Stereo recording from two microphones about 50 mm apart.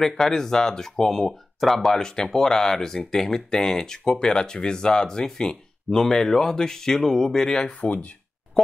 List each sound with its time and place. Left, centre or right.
0.0 s speech: centre
7.8 s speech: left